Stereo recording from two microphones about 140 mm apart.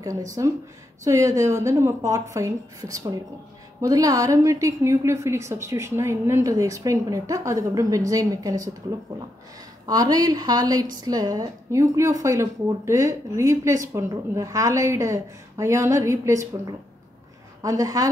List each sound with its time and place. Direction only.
0.0 s a woman's voice: 25° right (ahead or behind)
9.8 s a woman's voice: 25° right (ahead or behind)
17.6 s a woman's voice: 25° right (ahead or behind)